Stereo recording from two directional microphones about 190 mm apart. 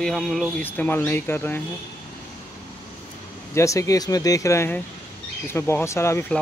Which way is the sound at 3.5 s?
15° left (ahead or behind).